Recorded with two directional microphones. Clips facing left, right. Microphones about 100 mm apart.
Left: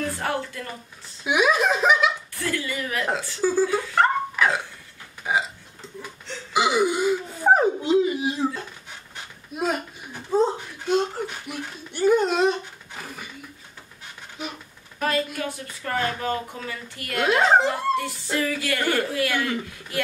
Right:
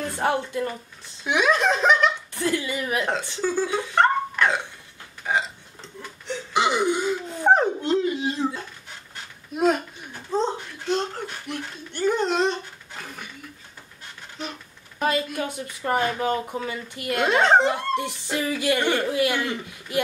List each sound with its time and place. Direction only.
0.2 s speech: 20° right (ahead or behind)
1.2 s speech: 10° left (ahead or behind)
2.3 s speech: 20° right (ahead or behind)
3.4 s a sound: 5° left (ahead or behind)
5.2 s burping: 5° left (ahead or behind)
6.5 s wail: 5° left (ahead or behind)
9.5 s a sound: centre (ahead or behind)
14.4 s a sound: 10° left (ahead or behind)
15.0 s speech: 20° right (ahead or behind)
17.2 s speech: 5° left (ahead or behind)
17.6 s speech: 20° right (ahead or behind)